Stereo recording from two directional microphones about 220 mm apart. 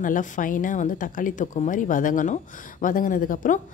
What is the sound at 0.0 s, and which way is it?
A woman's voice, 35° left (ahead or behind).